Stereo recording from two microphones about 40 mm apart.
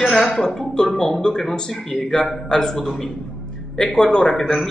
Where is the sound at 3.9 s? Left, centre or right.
Centre.